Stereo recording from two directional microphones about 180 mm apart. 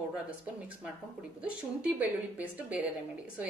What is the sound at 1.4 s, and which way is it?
A woman's voice, 5° right (ahead or behind).